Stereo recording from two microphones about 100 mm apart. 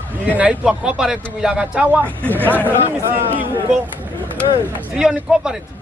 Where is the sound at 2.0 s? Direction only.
15° left (ahead or behind).